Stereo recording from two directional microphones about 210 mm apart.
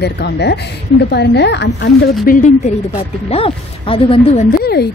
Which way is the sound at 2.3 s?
35° left (ahead or behind).